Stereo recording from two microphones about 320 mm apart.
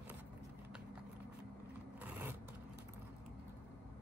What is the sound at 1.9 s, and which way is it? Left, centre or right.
Vehicle, centre.